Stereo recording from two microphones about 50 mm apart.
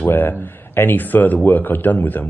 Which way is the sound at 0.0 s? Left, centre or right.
Left.